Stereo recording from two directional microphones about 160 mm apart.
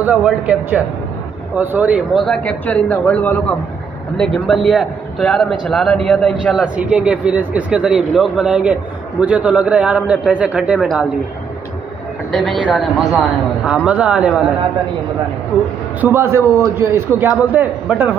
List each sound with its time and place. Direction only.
0.0 s a man's voice: 5° right (ahead or behind)
2.1 s a man's voice: 5° left (ahead or behind)
12.3 s a man's voice: 5° left (ahead or behind)
16.0 s a man's voice: 15° right (ahead or behind)